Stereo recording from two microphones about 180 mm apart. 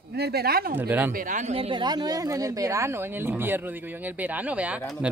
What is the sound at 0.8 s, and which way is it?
Speech, 10° right (ahead or behind).